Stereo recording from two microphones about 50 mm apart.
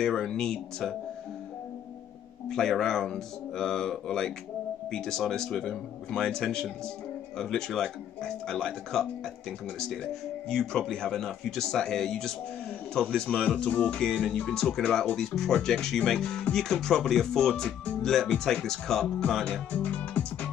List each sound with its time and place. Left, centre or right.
0.0 s speech: centre
2.5 s speech: centre
10.5 s speech: centre
14.5 s speech: centre
19.7 s speech: left